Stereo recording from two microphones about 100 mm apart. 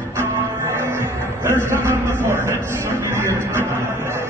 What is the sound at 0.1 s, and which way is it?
Music, 25° right (ahead or behind).